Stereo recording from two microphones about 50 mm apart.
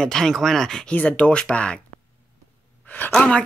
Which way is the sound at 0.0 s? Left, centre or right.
Centre.